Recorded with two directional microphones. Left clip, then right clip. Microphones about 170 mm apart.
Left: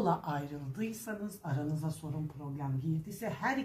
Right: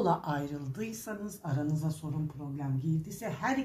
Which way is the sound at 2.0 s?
10° right (ahead or behind).